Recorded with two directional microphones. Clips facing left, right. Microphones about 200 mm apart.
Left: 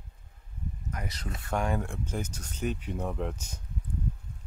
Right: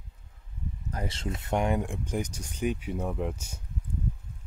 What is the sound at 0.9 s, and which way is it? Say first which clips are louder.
Speech: right 6 dB; 30° right (ahead or behind).